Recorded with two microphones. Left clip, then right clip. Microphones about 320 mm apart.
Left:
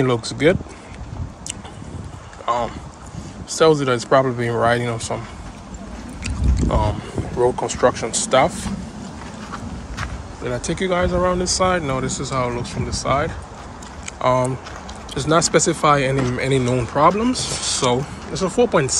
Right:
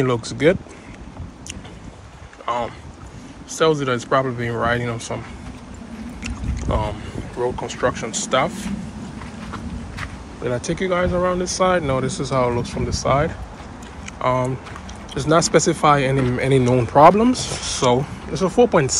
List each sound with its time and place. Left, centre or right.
0.0 s speech: centre
2.4 s speech: centre
6.2 s speech: centre
10.4 s speech: centre